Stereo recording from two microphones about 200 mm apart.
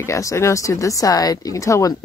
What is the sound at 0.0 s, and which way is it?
Speech, 15° left (ahead or behind).